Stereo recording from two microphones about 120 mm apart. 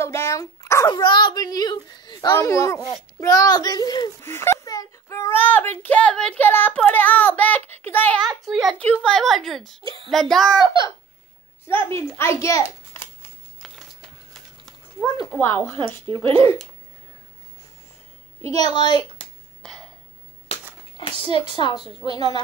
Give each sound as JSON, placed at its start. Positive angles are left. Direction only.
{"t": 0.0, "sound": "speech", "side_deg": 25}
{"t": 0.8, "sound": "a child's voice", "side_deg": 35}
{"t": 4.2, "sound": "a child's voice", "side_deg": 20}
{"t": 8.5, "sound": "a woman's voice", "side_deg": -5}
{"t": 8.7, "sound": "a woman's voice", "side_deg": 10}
{"t": 11.6, "sound": "a child's voice", "side_deg": 20}
{"t": 13.6, "sound": "a sound", "side_deg": 5}
{"t": 15.3, "sound": "a child's voice", "side_deg": 15}
{"t": 18.5, "sound": "a child's voice", "side_deg": 35}
{"t": 19.6, "sound": "a sound", "side_deg": 5}
{"t": 21.0, "sound": "a child's voice", "side_deg": 45}